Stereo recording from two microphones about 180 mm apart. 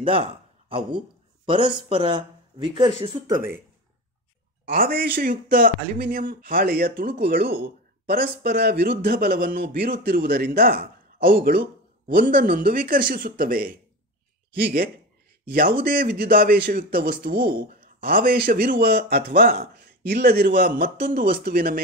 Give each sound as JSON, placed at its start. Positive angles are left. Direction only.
{"t": 0.0, "sound": "speech", "side_deg": -30}
{"t": 4.6, "sound": "a man's voice", "side_deg": -55}
{"t": 15.9, "sound": "a man's voice", "side_deg": -55}